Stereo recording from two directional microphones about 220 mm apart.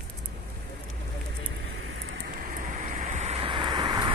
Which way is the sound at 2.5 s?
35° right (ahead or behind).